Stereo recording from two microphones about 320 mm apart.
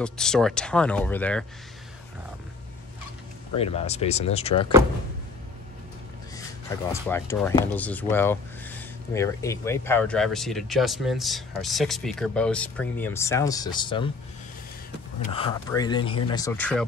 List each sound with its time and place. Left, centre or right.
0.0 s speech: centre
3.5 s speech: centre
6.9 s speech: centre
15.3 s speech: centre